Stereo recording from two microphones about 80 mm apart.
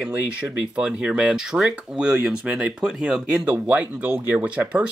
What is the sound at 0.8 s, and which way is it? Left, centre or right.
Speech, centre.